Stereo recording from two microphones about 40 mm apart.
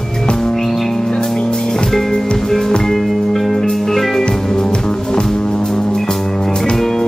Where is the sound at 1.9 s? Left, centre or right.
Centre.